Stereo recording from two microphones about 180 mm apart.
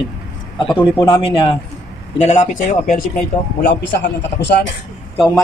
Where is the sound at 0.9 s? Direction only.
25° left (ahead or behind).